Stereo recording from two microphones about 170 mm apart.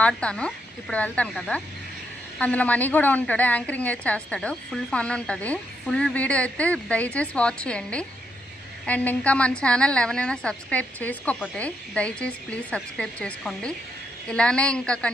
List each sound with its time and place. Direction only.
0.0 s a woman's voice: 5° left (ahead or behind)